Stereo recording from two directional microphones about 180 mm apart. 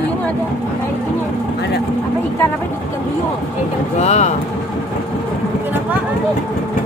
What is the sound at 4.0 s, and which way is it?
Speech, 35° left (ahead or behind).